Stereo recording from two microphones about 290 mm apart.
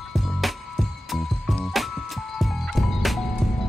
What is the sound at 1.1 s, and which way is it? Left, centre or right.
Music, centre.